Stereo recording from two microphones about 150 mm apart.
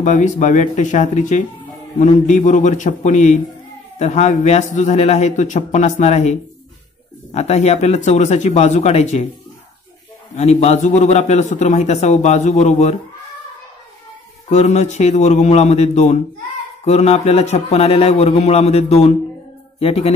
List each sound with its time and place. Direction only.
0.0 s a man's voice: 55° left (ahead or behind)
7.3 s a man's voice: 45° left (ahead or behind)
10.3 s a man's voice: 45° left (ahead or behind)
14.5 s a man's voice: 50° left (ahead or behind)